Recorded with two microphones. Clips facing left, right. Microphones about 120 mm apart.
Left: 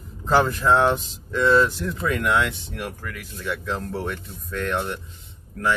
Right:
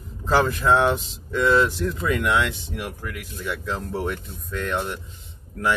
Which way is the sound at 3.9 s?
15° right (ahead or behind).